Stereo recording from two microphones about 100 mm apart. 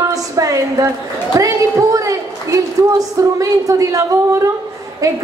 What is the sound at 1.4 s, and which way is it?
A woman's voice, 35° right (ahead or behind).